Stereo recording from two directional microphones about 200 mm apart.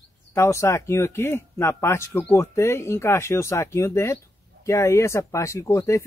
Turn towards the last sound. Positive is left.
turn(degrees=15)  # may be behind; listen again after turning